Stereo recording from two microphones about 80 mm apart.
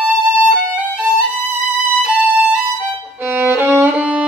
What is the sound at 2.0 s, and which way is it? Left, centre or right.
Music, centre.